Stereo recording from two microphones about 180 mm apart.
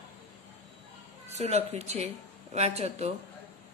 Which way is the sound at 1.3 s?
35° right (ahead or behind).